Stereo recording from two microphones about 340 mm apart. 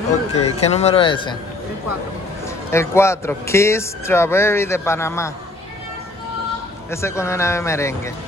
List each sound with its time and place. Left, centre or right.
0.3 s a man's voice: centre
2.4 s a man's voice: centre
6.9 s a man's voice: centre